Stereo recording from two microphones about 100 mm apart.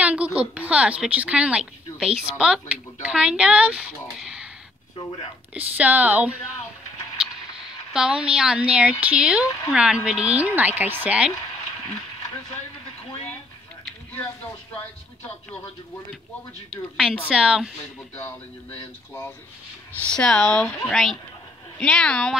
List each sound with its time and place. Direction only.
0.0 s a woman's voice: 15° right (ahead or behind)
5.5 s speech: 15° right (ahead or behind)
17.3 s speech: 10° right (ahead or behind)
18.1 s speech: 20° left (ahead or behind)